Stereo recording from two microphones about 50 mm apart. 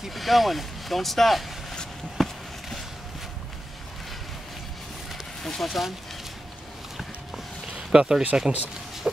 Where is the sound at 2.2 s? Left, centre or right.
Centre.